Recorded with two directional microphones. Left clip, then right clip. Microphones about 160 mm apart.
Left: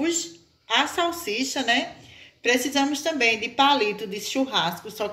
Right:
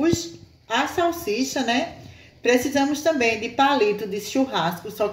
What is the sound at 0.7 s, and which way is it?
Speech, 55° right (ahead or behind).